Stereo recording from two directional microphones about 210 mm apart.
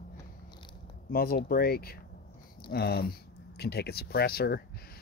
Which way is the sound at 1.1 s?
45° left (ahead or behind).